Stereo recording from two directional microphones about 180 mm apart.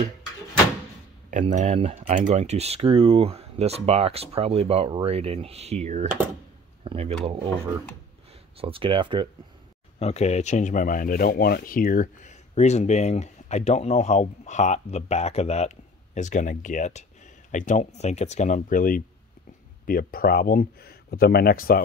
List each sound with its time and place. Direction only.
1.3 s speech: 40° right (ahead or behind)
8.5 s speech: 30° right (ahead or behind)
9.9 s speech: 35° left (ahead or behind); by 21.8 s 55° left (ahead or behind)